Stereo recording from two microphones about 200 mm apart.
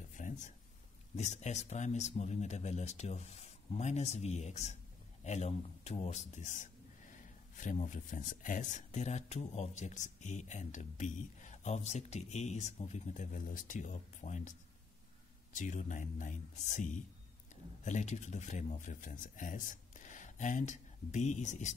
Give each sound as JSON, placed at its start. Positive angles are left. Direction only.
{"t": 0.2, "sound": "a sound", "side_deg": 40}
{"t": 1.1, "sound": "speech", "side_deg": 35}
{"t": 15.5, "sound": "speech", "side_deg": 40}